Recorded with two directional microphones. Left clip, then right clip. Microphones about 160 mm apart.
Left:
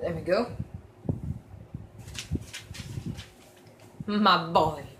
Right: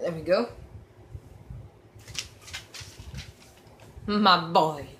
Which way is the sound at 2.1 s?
45° right (ahead or behind).